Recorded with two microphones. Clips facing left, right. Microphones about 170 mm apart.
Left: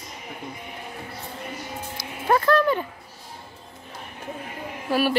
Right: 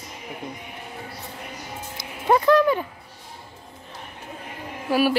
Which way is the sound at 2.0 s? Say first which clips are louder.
Right 2 dB; 15° right (ahead or behind).